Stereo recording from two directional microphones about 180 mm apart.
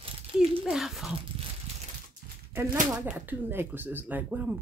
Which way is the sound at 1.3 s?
30° right (ahead or behind).